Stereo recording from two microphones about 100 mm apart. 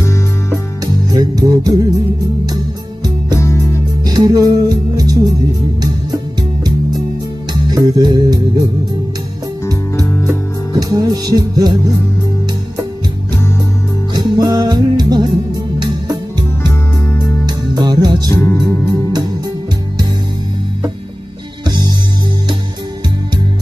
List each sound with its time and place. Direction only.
0.0 s music: 30° left (ahead or behind)
1.1 s music: 40° right (ahead or behind)
3.3 s music: 30° left (ahead or behind)
4.0 s music: 40° right (ahead or behind)
7.7 s music: 40° right (ahead or behind)
10.7 s music: 40° right (ahead or behind)
14.1 s music: 40° right (ahead or behind)
16.6 s music: 25° left (ahead or behind)
17.5 s music: 45° right (ahead or behind)
18.3 s music: 30° left (ahead or behind)
21.6 s music: 45° right (ahead or behind)